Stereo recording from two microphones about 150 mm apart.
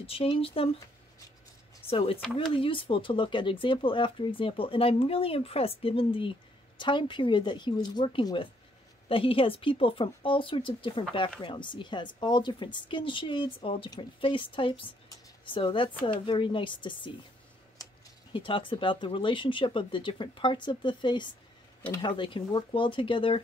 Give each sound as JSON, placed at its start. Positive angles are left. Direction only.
{"t": 0.0, "sound": "speech", "side_deg": 40}
{"t": 1.9, "sound": "speech", "side_deg": 40}
{"t": 17.8, "sound": "a sound", "side_deg": 25}
{"t": 18.3, "sound": "speech", "side_deg": 35}